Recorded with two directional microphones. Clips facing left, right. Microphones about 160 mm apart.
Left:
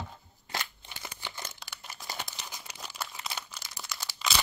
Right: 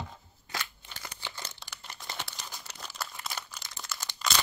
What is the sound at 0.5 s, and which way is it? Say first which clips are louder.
Crumpling: left 1 dB; 15° left (ahead or behind).